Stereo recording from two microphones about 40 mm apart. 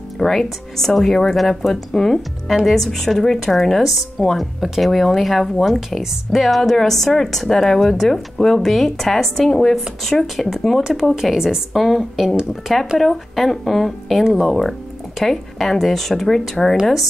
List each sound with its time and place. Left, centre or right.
0.2 s a woman's voice: centre
10.8 s a woman's voice: centre
11.7 s a woman's voice: centre
14.2 s a woman's voice: centre
14.5 s speech: centre